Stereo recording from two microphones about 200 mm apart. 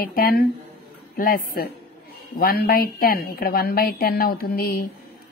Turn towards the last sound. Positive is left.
turn(degrees=50)  # may be behind; listen again after turning